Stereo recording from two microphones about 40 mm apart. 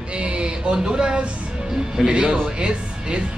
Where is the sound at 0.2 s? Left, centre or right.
Right.